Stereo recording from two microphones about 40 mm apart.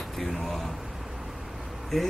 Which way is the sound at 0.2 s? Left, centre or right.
Centre.